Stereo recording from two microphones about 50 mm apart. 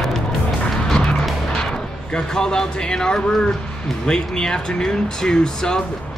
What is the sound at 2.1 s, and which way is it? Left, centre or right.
Speech, centre.